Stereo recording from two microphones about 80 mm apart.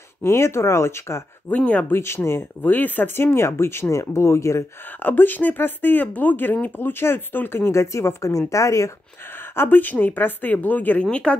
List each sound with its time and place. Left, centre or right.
0.2 s speech: left
1.5 s speech: centre
1.9 s speech: left
5.0 s speech: left
9.6 s speech: left